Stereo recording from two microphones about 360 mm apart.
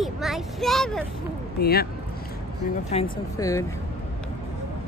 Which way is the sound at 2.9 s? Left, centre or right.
Centre.